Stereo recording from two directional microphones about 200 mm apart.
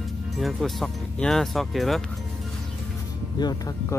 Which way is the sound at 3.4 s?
20° left (ahead or behind).